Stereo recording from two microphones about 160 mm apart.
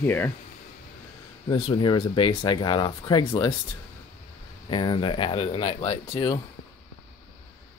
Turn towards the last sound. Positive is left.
turn(degrees=30)  # may be behind; listen again after turning